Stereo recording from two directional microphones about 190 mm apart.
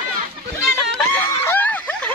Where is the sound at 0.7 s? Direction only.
10° left (ahead or behind).